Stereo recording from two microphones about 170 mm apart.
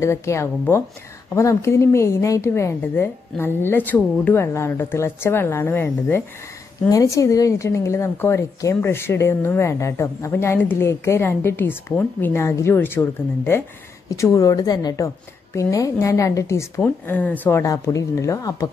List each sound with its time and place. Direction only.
0.0 s a woman's voice: 15° left (ahead or behind)